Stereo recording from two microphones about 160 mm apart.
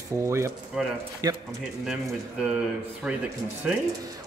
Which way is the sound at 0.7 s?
5° right (ahead or behind).